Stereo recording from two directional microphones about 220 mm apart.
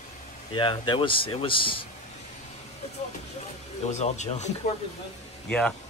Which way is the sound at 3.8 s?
30° left (ahead or behind).